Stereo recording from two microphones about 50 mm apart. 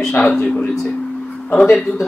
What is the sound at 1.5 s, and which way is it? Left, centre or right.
Speech, left.